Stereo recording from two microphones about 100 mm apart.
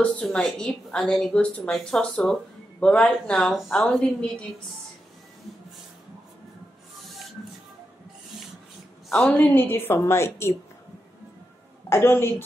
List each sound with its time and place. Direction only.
0.0 s a woman's voice: 10° left (ahead or behind)
9.2 s a woman's voice: 20° left (ahead or behind)
11.9 s a woman's voice: 25° left (ahead or behind)